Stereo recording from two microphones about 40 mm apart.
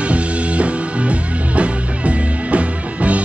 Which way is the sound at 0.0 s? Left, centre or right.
Right.